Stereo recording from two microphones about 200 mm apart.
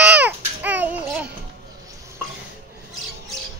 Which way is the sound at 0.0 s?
5° right (ahead or behind).